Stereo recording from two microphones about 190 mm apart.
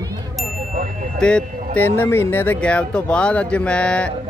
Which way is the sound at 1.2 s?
5° left (ahead or behind).